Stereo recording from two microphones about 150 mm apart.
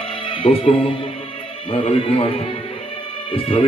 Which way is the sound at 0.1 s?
35° left (ahead or behind).